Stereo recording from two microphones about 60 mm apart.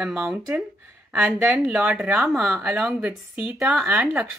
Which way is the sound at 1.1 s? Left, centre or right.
Right.